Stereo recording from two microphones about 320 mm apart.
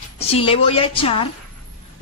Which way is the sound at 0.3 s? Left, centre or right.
Centre.